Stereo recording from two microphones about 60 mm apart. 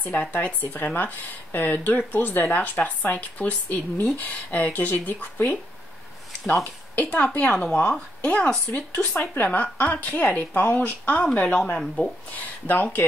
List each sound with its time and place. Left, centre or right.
0.0 s speech: left
6.6 s speech: left
12.4 s speech: left